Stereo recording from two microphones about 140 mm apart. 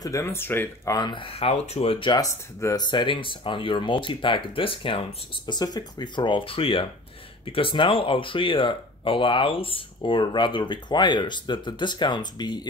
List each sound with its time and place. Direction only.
0.0 s speech: 20° left (ahead or behind)
0.9 s speech: 35° left (ahead or behind)